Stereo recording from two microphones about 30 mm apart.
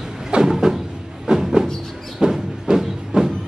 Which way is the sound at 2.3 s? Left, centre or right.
Centre.